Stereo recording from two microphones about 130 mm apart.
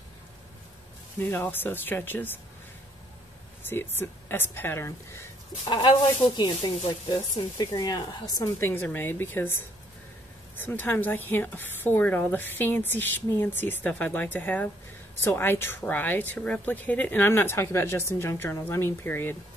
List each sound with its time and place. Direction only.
1.2 s speech: 15° left (ahead or behind)
3.6 s speech: 15° left (ahead or behind)
5.7 s speech: 35° left (ahead or behind)
8.5 s speech: 15° left (ahead or behind)
10.6 s speech: 15° left (ahead or behind)